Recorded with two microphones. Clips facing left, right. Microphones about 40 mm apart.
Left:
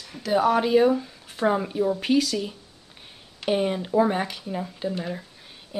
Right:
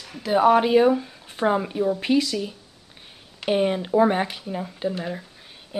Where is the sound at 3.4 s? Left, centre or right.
Centre.